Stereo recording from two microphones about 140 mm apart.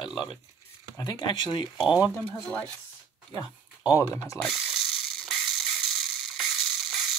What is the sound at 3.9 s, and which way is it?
Speech, 25° left (ahead or behind).